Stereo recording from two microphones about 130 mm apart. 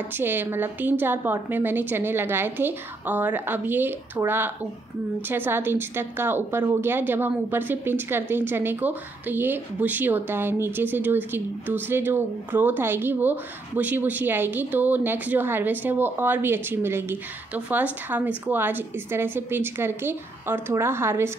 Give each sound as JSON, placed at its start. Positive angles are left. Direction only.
{"t": 0.2, "sound": "a woman's voice", "side_deg": -15}